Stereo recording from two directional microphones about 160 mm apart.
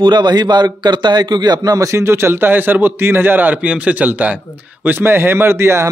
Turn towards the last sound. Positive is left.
turn(degrees=-15)  # may be behind; listen again after turning